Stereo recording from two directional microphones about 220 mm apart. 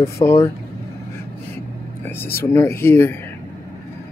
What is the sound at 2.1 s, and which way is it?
Speech, 10° left (ahead or behind).